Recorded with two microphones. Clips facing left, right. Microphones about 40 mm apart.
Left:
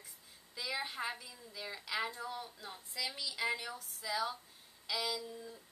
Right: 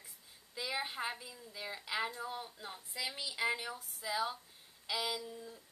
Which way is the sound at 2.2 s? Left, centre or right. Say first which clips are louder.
Right 1 dB; centre.